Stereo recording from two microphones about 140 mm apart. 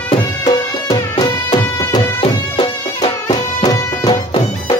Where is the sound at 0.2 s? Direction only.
30° left (ahead or behind).